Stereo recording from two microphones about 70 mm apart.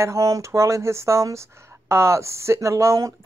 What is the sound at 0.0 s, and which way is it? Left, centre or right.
Speech, right.